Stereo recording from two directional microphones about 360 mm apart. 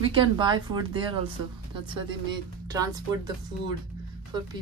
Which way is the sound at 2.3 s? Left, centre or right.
Centre.